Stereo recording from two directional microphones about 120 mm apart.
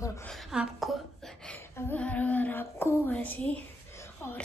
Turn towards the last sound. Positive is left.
turn(degrees=20)  # may be behind; listen again after turning